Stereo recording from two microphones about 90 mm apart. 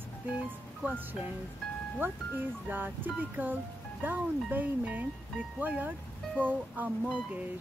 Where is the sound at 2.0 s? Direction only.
25° right (ahead or behind).